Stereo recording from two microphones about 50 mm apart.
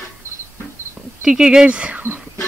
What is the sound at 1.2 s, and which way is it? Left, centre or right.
Speech, centre.